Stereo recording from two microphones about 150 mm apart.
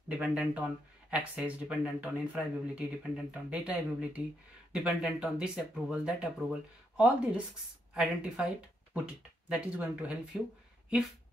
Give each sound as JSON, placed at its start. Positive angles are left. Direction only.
{"t": 0.2, "sound": "speech", "side_deg": -5}